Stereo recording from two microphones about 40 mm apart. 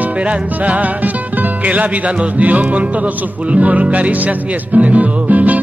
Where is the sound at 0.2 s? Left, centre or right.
Right.